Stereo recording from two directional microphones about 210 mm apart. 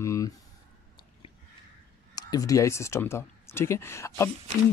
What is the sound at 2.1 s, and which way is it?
Speech, 15° left (ahead or behind).